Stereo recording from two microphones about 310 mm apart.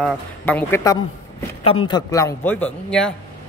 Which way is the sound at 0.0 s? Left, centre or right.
Centre.